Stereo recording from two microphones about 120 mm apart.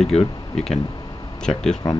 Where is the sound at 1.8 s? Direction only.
30° left (ahead or behind).